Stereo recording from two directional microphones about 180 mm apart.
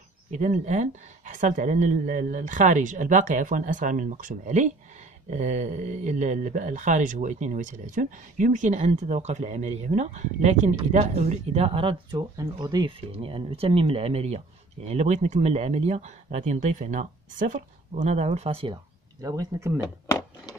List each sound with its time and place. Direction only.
0.3 s speech: 45° right (ahead or behind)
19.2 s speech: 20° right (ahead or behind)